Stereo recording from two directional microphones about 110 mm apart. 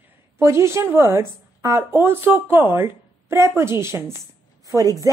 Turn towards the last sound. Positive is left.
turn(degrees=-35)  # may be behind; listen again after turning